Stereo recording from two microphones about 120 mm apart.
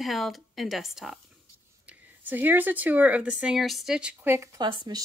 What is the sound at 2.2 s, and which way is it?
A woman's voice, 15° right (ahead or behind).